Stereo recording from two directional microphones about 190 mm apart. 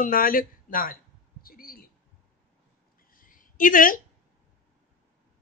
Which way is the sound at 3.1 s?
45° left (ahead or behind).